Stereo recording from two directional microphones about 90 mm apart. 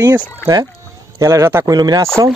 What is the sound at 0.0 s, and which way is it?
Speech, 50° right (ahead or behind).